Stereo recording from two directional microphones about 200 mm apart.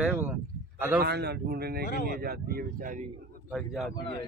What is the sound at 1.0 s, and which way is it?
Speech, 55° right (ahead or behind).